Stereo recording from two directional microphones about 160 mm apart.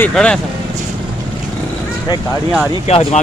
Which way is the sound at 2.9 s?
40° left (ahead or behind).